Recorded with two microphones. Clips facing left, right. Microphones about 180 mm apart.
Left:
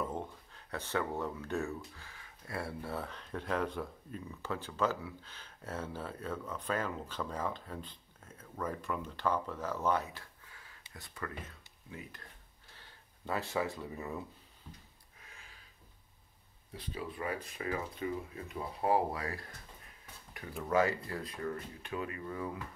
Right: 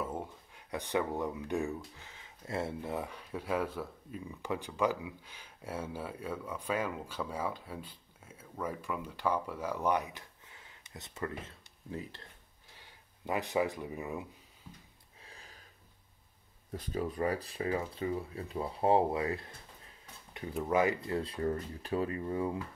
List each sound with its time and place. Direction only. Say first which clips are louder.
0.0 s speech: even; 10° right (ahead or behind); by 12.3 s 30° right (ahead or behind)
12.7 s speech: right 1 dB; 15° right (ahead or behind)
15.2 s a sound: right 3 dB; 35° right (ahead or behind)
16.7 s speech: right 6 dB; 45° right (ahead or behind); by 22.6 s 25° right (ahead or behind)